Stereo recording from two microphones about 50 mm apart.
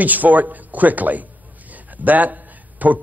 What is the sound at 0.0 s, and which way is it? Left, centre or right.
A man's voice, right.